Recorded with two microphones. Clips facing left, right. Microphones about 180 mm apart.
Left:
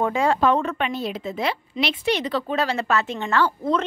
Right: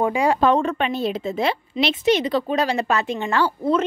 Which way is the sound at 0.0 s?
15° right (ahead or behind).